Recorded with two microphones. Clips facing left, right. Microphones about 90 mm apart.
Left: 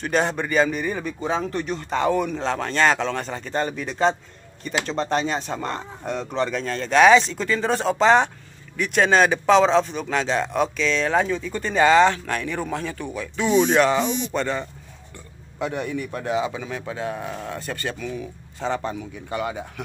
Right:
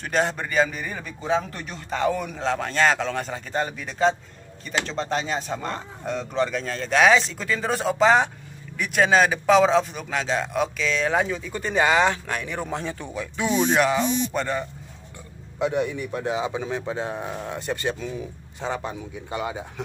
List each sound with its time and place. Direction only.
0.0 s a man's voice: centre (ahead or behind); by 13.5 s 20° right (ahead or behind)
13.7 s a man's voice: centre (ahead or behind); by 18.7 s 20° right (ahead or behind)
18.7 s a man's voice: 10° right (ahead or behind)